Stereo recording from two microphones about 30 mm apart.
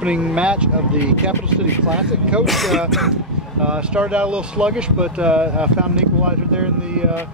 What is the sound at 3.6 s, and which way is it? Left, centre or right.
Speech, right.